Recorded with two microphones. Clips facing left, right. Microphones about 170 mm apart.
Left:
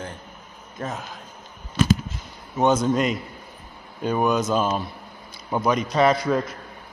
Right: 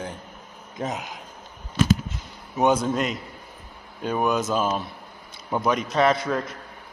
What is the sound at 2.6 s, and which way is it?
A man's voice, 10° right (ahead or behind).